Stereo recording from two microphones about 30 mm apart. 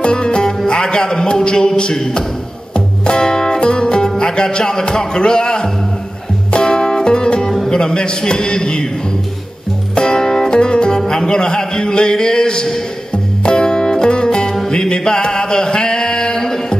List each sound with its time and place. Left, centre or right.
0.0 s music: left
0.7 s a man's voice: left
2.7 s music: left
7.7 s a man's voice: left
9.9 s music: left
11.1 s speech: left
13.1 s music: left